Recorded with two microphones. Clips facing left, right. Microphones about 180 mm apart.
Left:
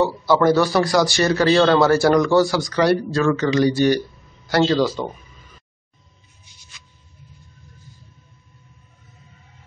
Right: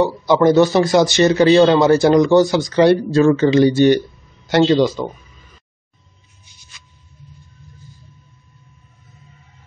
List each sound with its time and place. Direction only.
0.0 s speech: 20° right (ahead or behind)